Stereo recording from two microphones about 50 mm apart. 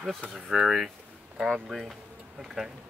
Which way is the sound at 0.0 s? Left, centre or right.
Centre.